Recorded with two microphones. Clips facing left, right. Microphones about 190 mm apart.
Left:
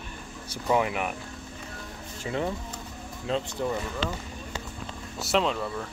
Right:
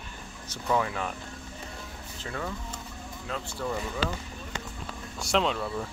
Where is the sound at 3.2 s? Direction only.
25° left (ahead or behind).